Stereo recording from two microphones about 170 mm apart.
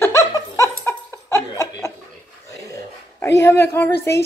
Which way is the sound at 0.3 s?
20° left (ahead or behind).